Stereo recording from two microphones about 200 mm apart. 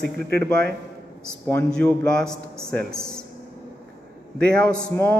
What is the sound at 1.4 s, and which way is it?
A man's voice, 5° left (ahead or behind).